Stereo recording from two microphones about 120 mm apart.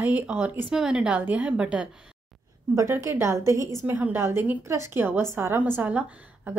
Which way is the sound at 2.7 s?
25° right (ahead or behind).